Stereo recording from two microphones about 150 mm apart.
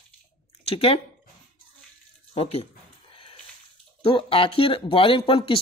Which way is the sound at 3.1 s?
40° left (ahead or behind).